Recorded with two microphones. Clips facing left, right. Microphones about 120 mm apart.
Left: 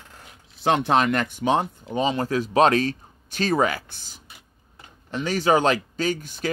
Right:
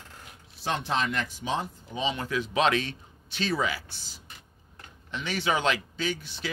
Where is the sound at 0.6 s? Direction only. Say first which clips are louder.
Left 9 dB; 65° left (ahead or behind).